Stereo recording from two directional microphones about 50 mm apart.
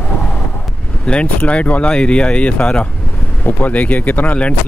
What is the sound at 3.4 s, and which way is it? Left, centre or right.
Speech, left.